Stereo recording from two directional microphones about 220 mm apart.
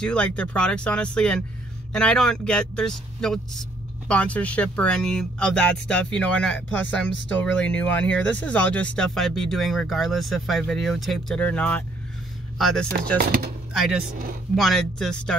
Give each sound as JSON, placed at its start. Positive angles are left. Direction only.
{"t": 0.0, "sound": "speech", "side_deg": 5}
{"t": 13.2, "sound": "speech", "side_deg": -40}
{"t": 14.5, "sound": "speech", "side_deg": 0}